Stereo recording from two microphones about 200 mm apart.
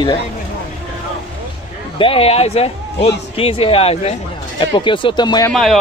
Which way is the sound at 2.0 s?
25° left (ahead or behind).